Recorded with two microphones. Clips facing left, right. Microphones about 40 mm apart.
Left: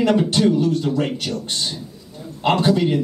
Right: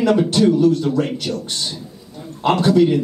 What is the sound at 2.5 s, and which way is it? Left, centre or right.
Speech, left.